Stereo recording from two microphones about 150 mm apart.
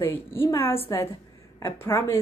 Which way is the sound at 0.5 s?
15° left (ahead or behind).